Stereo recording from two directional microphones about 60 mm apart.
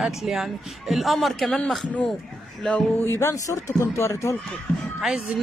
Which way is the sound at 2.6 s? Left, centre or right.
Centre.